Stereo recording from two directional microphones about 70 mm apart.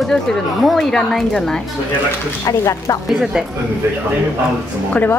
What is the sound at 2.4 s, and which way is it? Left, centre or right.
Speech, left.